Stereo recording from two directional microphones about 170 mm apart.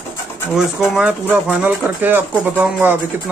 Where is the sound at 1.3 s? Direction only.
10° right (ahead or behind).